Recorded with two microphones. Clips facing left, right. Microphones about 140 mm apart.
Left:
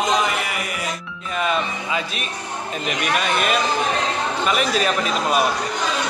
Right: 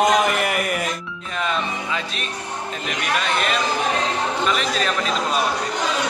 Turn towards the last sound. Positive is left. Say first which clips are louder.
# left 2 dB
turn(degrees=10)  # may be behind; listen again after turning